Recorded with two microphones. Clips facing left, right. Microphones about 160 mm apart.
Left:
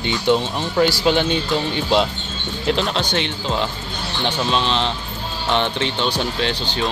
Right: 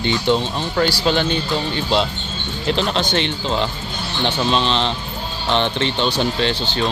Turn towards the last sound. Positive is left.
turn(degrees=5)  # may be behind; listen again after turning